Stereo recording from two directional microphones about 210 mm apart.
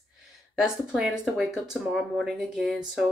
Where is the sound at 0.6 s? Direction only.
Centre (ahead or behind).